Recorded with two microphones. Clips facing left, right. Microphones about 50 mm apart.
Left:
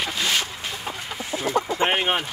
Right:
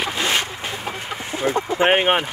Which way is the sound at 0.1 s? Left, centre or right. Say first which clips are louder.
Right 3 dB; right.